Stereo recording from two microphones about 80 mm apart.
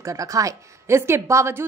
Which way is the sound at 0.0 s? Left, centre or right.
Right.